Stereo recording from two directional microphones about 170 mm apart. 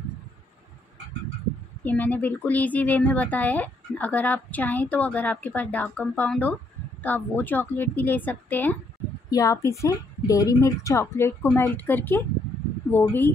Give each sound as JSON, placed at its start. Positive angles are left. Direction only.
{"t": 1.9, "sound": "speech", "side_deg": 10}